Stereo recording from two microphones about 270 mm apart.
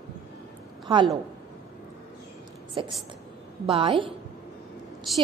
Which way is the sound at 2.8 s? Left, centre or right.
Centre.